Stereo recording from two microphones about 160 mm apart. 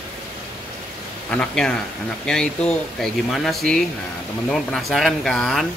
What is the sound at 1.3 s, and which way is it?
Speech, 5° left (ahead or behind).